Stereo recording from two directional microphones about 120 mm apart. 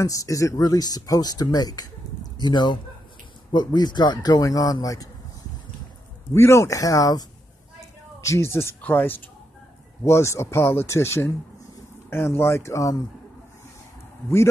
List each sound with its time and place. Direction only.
0.0 s speech: 30° left (ahead or behind)
6.3 s speech: 25° left (ahead or behind)